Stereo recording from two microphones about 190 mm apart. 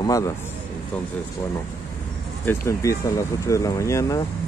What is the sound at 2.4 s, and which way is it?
Speech, 15° left (ahead or behind).